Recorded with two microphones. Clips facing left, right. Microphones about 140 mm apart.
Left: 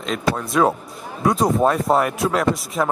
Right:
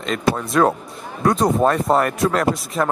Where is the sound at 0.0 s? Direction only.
Centre (ahead or behind).